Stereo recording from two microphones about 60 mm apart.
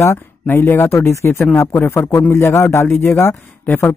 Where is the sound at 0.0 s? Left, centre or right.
Left.